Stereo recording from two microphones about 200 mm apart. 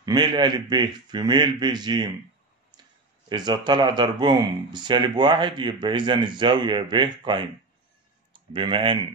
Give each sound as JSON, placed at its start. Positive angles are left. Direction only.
{"t": 0.0, "sound": "speech", "side_deg": -20}
{"t": 3.3, "sound": "speech", "side_deg": -20}